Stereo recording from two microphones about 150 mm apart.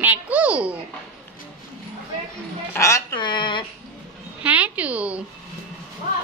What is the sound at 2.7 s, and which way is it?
Speech, 20° left (ahead or behind).